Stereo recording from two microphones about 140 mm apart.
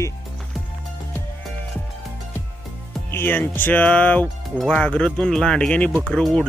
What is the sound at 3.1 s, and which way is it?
Speech, 15° left (ahead or behind).